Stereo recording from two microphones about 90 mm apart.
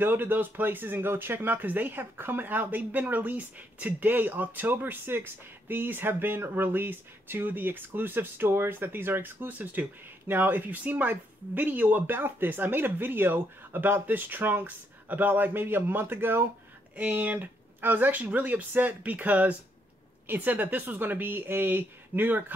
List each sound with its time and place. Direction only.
0.0 s speech: 25° right (ahead or behind)